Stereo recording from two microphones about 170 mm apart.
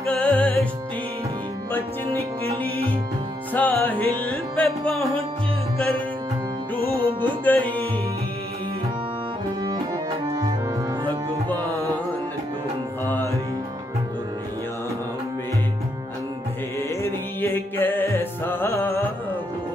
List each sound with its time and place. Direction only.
0.0 s music: 5° left (ahead or behind)
3.5 s music: 10° left (ahead or behind)
7.1 s music: 30° right (ahead or behind)
7.4 s music: 10° left (ahead or behind)
13.1 s music: 15° left (ahead or behind)
17.0 s music: 10° left (ahead or behind)